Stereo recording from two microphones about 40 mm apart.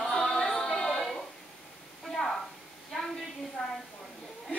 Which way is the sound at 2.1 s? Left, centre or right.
Centre.